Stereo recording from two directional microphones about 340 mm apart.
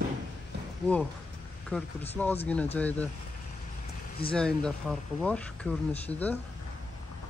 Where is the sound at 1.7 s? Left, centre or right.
Centre.